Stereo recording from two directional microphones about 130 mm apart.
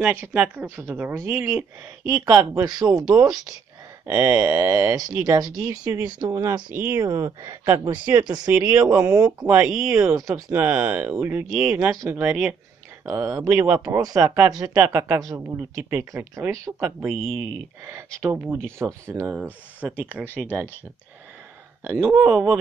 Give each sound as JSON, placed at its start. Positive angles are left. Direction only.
{"t": 0.0, "sound": "speech", "side_deg": -10}
{"t": 2.1, "sound": "speech", "side_deg": -30}
{"t": 7.0, "sound": "speech", "side_deg": -25}
{"t": 13.1, "sound": "speech", "side_deg": -25}
{"t": 17.1, "sound": "speech", "side_deg": 5}
{"t": 17.8, "sound": "speech", "side_deg": -20}
{"t": 21.8, "sound": "speech", "side_deg": -15}